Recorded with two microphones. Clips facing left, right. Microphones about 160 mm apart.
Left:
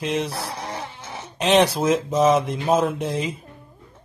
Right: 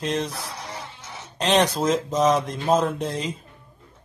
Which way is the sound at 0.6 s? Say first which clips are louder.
Left 5 dB; 65° left (ahead or behind).